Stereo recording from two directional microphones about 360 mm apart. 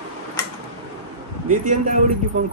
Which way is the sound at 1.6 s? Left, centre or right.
Right.